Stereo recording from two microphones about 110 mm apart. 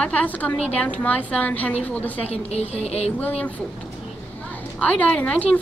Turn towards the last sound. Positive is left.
turn(degrees=15)  # may be behind; listen again after turning